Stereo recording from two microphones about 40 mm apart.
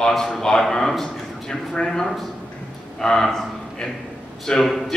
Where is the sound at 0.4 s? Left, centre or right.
Centre.